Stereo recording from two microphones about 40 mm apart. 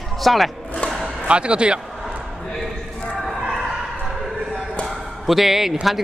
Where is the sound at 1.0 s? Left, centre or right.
Right.